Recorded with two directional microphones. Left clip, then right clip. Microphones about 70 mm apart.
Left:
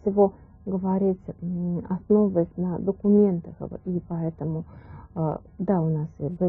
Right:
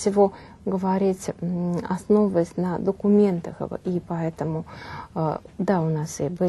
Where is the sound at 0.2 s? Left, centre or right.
Right.